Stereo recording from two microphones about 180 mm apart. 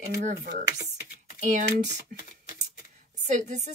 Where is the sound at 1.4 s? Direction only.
45° right (ahead or behind).